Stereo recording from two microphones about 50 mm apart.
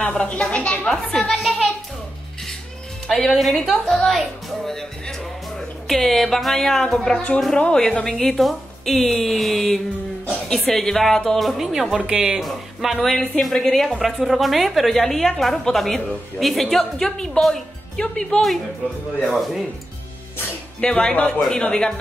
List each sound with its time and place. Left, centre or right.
0.2 s a woman's voice: left
0.8 s a woman's voice: centre
3.3 s a woman's voice: centre
4.1 s speech: centre
5.9 s a woman's voice: centre
12.1 s speech: right
12.4 s a woman's voice: centre
19.2 s a woman's voice: centre
20.8 s speech: centre